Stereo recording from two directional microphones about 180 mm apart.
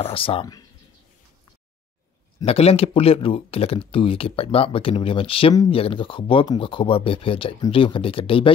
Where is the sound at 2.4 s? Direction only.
35° left (ahead or behind).